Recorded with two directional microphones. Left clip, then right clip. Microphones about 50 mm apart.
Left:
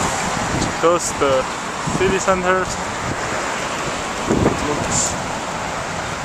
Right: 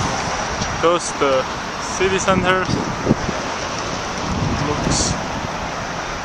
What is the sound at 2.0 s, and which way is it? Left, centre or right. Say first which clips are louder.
Speech: even; centre.